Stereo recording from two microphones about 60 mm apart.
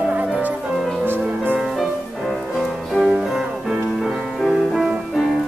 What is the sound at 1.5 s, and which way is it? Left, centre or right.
Music, centre.